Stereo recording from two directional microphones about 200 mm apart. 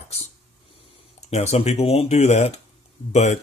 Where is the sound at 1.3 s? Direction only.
30° left (ahead or behind).